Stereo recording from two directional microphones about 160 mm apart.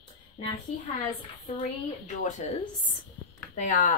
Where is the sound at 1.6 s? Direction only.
50° left (ahead or behind).